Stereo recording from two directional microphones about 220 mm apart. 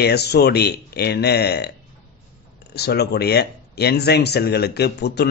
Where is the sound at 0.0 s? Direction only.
50° left (ahead or behind).